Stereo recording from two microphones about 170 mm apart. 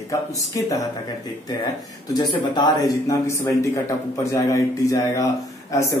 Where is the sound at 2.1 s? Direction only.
25° left (ahead or behind).